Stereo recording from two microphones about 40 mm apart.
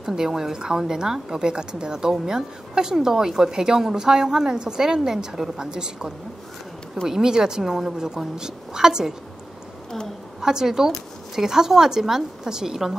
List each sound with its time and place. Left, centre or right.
0.0 s a woman's voice: centre
10.4 s a woman's voice: centre